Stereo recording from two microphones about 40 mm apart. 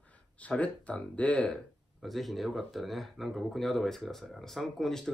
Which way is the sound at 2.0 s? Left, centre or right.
Centre.